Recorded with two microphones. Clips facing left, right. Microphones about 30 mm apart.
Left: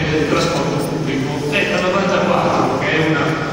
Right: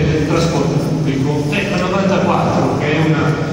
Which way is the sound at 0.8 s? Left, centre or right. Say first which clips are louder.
Right 2 dB; centre.